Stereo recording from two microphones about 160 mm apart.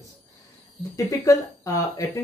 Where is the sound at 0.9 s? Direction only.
15° left (ahead or behind).